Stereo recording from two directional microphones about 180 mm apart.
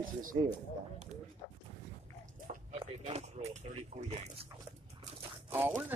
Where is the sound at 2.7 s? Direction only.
35° right (ahead or behind).